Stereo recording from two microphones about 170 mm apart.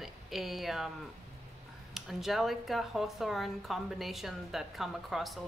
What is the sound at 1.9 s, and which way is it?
Speech, centre (ahead or behind).